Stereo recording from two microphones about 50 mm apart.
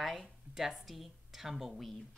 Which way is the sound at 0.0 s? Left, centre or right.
Centre.